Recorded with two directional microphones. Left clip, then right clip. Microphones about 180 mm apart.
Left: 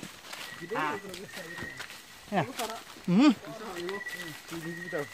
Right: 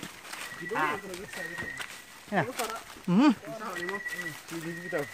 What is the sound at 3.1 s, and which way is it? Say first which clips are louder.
Speech: even; 10° left (ahead or behind).